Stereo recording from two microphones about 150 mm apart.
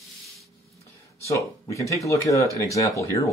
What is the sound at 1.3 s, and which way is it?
Speech, 20° left (ahead or behind).